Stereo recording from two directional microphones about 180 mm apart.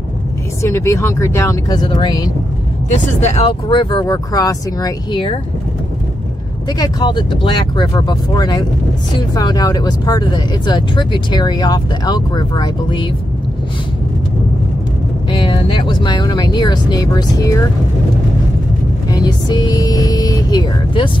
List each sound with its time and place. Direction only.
0.6 s speech: 15° left (ahead or behind)
2.9 s speech: 35° left (ahead or behind)
6.8 s speech: 25° left (ahead or behind)
15.3 s speech: 25° left (ahead or behind)
19.0 s speech: 20° left (ahead or behind)